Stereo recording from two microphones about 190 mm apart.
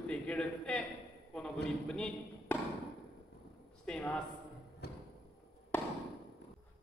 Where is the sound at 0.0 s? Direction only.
5° left (ahead or behind).